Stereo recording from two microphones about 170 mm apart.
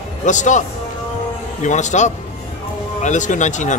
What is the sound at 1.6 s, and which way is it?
Speech, 45° left (ahead or behind).